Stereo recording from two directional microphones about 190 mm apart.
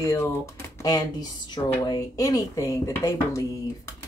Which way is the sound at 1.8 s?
20° left (ahead or behind).